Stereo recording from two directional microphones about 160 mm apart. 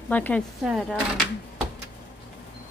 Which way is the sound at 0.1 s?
10° left (ahead or behind).